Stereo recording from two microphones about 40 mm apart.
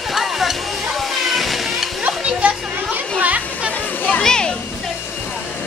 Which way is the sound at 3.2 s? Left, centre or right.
Right.